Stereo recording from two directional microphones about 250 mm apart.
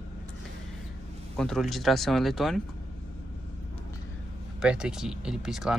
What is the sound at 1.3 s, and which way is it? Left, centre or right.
Speech, centre.